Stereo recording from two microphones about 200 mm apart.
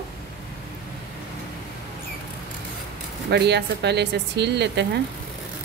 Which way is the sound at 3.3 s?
55° right (ahead or behind).